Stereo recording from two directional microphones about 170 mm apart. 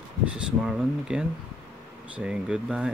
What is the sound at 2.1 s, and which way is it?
Speech, 5° right (ahead or behind).